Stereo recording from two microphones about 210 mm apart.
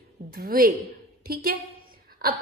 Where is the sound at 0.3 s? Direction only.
45° right (ahead or behind).